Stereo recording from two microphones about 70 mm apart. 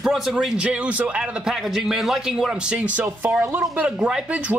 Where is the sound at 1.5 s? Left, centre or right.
Centre.